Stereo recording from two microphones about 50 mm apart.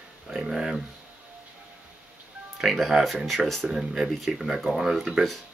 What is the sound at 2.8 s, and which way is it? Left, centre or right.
Speech, centre.